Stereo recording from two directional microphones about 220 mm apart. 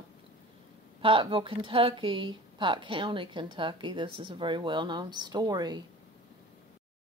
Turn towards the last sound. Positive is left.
turn(degrees=-20)  # may be behind; listen again after turning